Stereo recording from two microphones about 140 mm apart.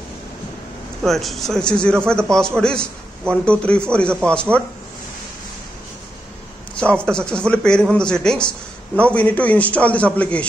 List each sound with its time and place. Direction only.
1.0 s a man's voice: centre (ahead or behind)
6.8 s speech: 5° left (ahead or behind)